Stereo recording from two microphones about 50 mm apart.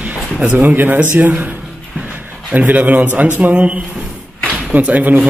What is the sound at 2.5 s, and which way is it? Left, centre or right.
A man's voice, right.